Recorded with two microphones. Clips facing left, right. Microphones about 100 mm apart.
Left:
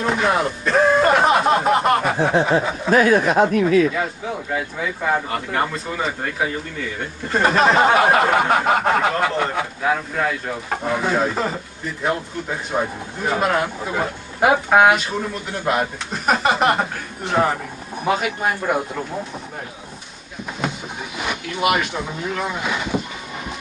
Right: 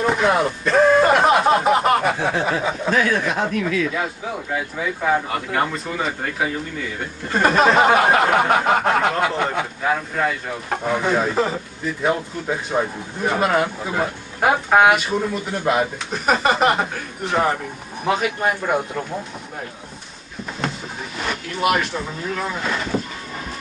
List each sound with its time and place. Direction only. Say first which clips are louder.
0.0 s speech: right 1 dB; centre (ahead or behind)
3.3 s speech: left 6 dB; 40° left (ahead or behind)
3.9 s speech: left 1 dB; centre (ahead or behind)
21.2 s speech: even; 5° left (ahead or behind)